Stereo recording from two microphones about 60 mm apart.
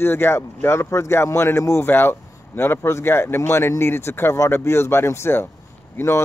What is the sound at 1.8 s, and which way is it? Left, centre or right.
Speech, left.